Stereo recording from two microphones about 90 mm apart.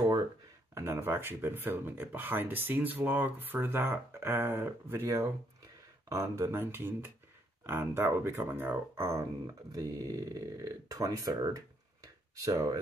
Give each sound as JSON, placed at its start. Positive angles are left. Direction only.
{"t": 0.7, "sound": "speech", "side_deg": -30}